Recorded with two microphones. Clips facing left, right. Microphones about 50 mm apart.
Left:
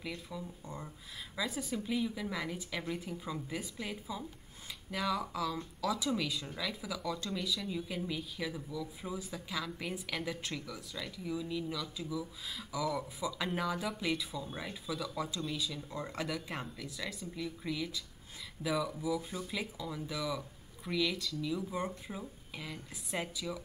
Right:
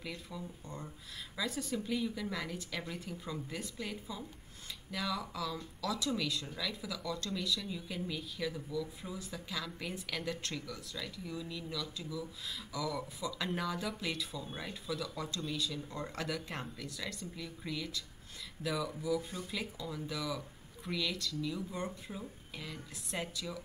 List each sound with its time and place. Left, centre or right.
0.0 s speech: centre